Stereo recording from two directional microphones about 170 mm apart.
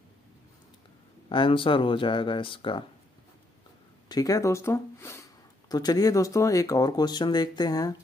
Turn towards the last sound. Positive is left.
turn(degrees=20)  # may be behind; listen again after turning